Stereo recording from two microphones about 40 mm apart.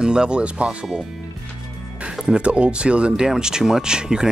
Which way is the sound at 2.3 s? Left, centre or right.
Right.